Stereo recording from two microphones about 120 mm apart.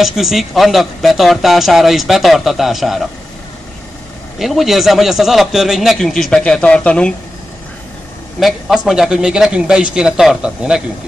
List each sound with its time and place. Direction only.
0.0 s speech: centre (ahead or behind)
4.4 s speech: centre (ahead or behind)
8.4 s speech: centre (ahead or behind)